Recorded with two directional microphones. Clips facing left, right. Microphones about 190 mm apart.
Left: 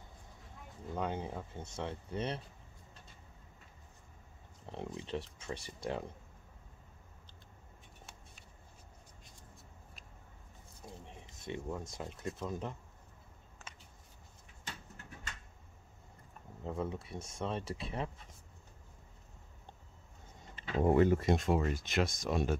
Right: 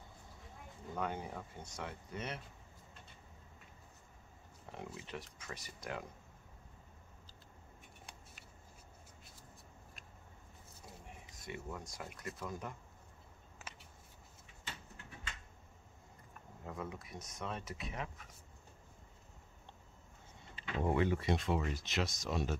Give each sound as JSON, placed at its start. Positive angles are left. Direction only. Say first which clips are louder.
{"t": 0.9, "sound": "speech", "louder": "left 3 dB", "side_deg": 20}
{"t": 4.6, "sound": "speech", "louder": "left 6 dB", "side_deg": 30}
{"t": 10.8, "sound": "a sound", "louder": "left 6 dB", "side_deg": 25}
{"t": 11.3, "sound": "speech", "louder": "left 5 dB", "side_deg": 25}
{"t": 16.6, "sound": "speech", "louder": "left 6 dB", "side_deg": 30}
{"t": 20.5, "sound": "speech", "louder": "left 6 dB", "side_deg": 45}